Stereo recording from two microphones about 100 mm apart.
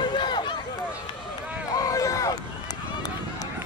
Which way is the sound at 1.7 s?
35° left (ahead or behind).